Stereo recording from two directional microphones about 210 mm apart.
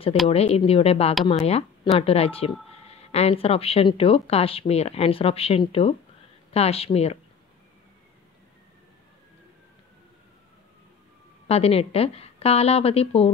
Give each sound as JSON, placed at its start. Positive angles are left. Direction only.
{"t": 0.3, "sound": "speech", "side_deg": 30}
{"t": 11.4, "sound": "speech", "side_deg": 30}